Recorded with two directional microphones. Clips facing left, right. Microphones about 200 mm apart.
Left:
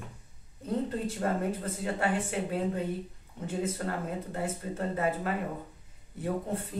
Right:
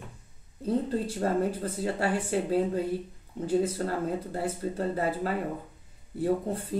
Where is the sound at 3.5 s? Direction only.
30° right (ahead or behind).